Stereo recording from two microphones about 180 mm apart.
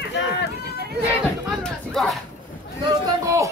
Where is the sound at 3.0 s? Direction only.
15° right (ahead or behind).